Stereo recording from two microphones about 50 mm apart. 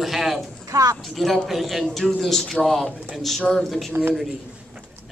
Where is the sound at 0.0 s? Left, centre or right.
Centre.